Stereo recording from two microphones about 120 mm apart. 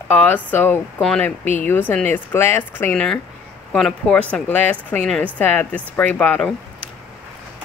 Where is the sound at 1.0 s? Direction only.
5° left (ahead or behind).